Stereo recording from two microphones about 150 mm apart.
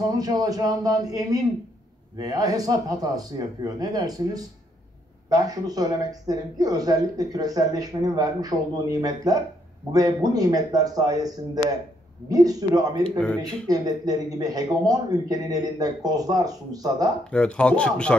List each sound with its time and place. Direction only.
0.1 s a man's voice: 25° right (ahead or behind)
17.2 s speech: 5° left (ahead or behind)